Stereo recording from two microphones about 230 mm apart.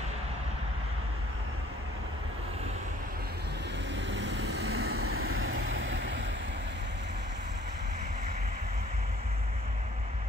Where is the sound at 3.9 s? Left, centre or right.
Right.